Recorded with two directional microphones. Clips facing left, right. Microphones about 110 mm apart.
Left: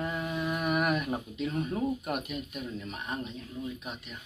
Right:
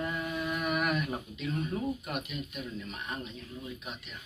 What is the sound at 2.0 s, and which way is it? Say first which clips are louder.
Speech: left 3 dB; 45° left (ahead or behind).